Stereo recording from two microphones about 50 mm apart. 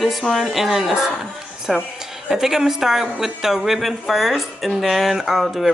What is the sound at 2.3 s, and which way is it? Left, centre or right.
A woman's voice, centre.